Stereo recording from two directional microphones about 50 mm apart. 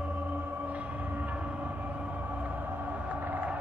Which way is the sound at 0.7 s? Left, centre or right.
Right.